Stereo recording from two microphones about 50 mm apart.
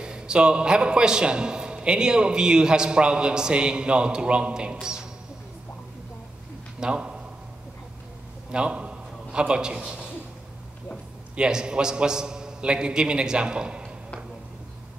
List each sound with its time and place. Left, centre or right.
0.0 s a man's voice: centre
6.8 s a man's voice: centre
8.5 s a man's voice: centre
11.3 s a man's voice: centre